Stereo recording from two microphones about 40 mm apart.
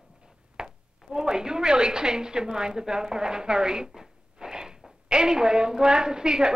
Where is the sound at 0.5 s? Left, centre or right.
Centre.